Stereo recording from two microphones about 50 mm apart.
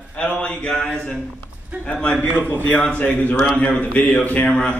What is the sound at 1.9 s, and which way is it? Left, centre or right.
Speech, centre.